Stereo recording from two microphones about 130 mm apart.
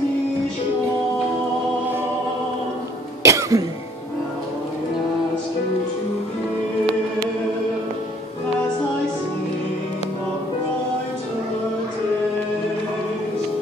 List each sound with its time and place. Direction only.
3.2 s cough: 25° right (ahead or behind)